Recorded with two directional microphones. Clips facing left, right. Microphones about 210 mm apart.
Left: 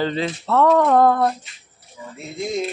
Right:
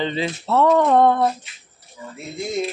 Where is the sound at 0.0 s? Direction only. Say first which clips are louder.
Left 1 dB; centre (ahead or behind).